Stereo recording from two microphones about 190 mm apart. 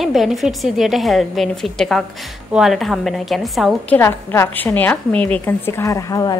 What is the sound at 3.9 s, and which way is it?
A woman's voice, 15° left (ahead or behind).